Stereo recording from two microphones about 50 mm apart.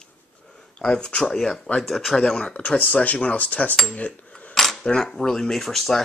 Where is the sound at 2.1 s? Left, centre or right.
Centre.